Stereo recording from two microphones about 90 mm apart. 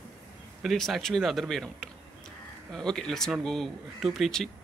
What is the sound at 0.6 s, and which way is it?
A man's voice, centre (ahead or behind).